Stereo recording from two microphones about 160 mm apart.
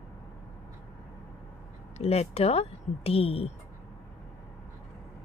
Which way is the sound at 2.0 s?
40° left (ahead or behind).